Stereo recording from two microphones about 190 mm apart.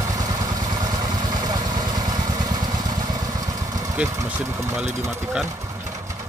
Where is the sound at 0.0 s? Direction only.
20° right (ahead or behind).